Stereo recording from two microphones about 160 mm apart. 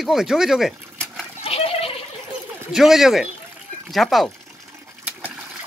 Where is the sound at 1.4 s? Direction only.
40° left (ahead or behind).